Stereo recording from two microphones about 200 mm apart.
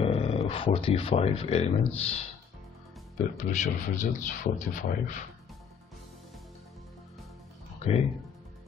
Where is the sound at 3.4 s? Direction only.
35° left (ahead or behind).